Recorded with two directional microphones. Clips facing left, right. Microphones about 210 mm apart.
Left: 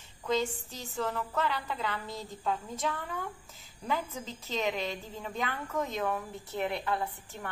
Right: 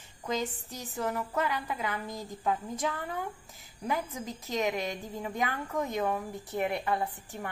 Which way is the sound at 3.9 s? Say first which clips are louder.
Right 1 dB; 15° right (ahead or behind).